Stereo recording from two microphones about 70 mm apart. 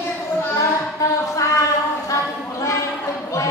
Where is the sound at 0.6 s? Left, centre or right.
Left.